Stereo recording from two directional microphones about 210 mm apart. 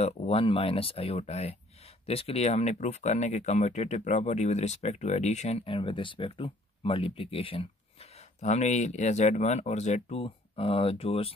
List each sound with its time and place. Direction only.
0.0 s speech: 30° left (ahead or behind)